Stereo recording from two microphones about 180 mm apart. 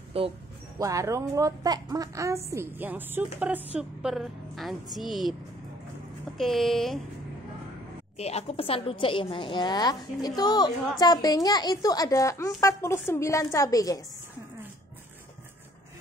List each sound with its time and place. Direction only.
0.2 s speech: 30° right (ahead or behind)
0.7 s a woman's voice: 20° right (ahead or behind); by 5.3 s centre (ahead or behind)
6.3 s speech: centre (ahead or behind)
8.2 s a woman's voice: 35° left (ahead or behind); by 14.0 s 20° left (ahead or behind)